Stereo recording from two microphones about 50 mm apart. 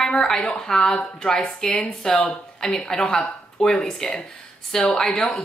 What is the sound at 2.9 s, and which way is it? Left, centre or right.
Speech, centre.